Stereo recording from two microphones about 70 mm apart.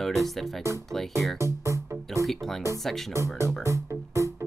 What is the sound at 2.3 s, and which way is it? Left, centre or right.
Speech, centre.